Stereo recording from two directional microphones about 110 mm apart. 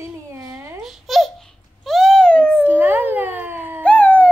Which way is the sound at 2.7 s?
20° right (ahead or behind).